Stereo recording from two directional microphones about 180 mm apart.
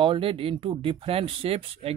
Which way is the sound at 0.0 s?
30° right (ahead or behind).